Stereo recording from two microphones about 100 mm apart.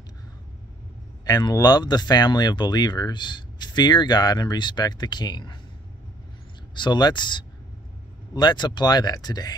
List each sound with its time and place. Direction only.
1.2 s speech: 40° left (ahead or behind)
6.7 s speech: 50° left (ahead or behind)